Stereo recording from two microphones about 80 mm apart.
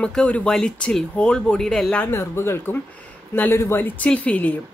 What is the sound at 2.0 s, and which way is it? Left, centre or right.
A woman's voice, left.